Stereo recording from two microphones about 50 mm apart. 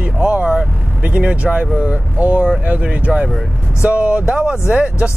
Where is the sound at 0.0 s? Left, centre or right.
Right.